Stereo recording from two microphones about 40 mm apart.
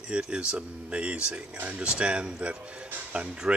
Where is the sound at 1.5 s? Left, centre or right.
Right.